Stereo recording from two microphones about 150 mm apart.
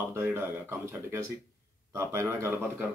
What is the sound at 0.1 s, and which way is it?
Speech, 15° right (ahead or behind).